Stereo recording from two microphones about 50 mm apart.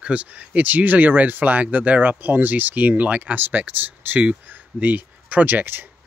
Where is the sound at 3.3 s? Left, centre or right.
Right.